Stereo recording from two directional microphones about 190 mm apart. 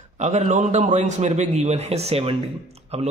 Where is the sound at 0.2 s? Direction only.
35° right (ahead or behind).